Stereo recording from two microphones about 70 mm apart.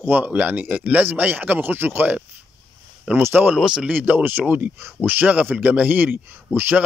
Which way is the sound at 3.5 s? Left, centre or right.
Centre.